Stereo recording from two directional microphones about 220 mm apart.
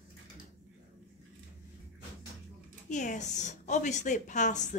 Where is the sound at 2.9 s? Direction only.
35° left (ahead or behind).